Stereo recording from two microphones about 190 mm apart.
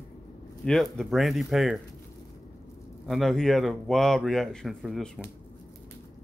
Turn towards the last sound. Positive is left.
turn(degrees=0)  # may be behind; listen again after turning